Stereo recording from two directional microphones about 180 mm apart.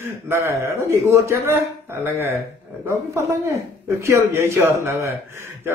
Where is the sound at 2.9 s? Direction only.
15° right (ahead or behind).